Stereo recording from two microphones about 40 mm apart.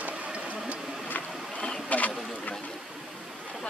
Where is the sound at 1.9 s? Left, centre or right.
Left.